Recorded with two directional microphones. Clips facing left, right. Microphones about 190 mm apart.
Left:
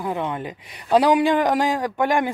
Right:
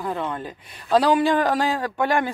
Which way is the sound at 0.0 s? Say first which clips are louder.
Left 2 dB; 15° left (ahead or behind).